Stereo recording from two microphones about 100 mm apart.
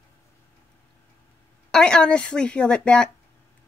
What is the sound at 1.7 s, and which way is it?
Speech, 5° left (ahead or behind).